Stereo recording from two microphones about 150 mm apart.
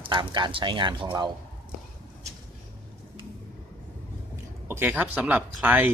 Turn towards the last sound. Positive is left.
turn(degrees=-10)  # may be behind; listen again after turning